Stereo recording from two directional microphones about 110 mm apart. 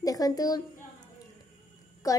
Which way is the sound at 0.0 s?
35° left (ahead or behind).